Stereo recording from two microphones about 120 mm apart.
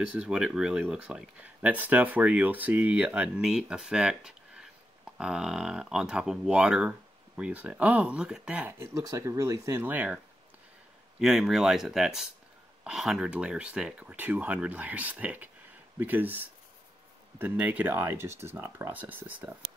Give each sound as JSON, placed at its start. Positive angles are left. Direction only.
{"t": 0.1, "sound": "speech", "side_deg": -10}
{"t": 8.7, "sound": "speech", "side_deg": -25}